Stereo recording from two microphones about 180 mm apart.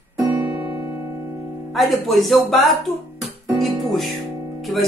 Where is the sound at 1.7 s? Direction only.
Centre (ahead or behind).